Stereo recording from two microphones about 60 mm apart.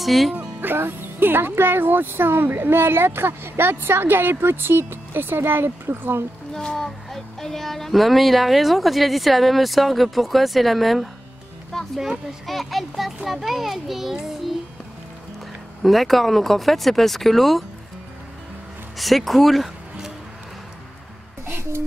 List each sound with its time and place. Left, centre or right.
0.0 s speech: centre
0.6 s speech: right
6.5 s speech: centre
15.8 s speech: centre
18.9 s speech: centre
21.5 s speech: right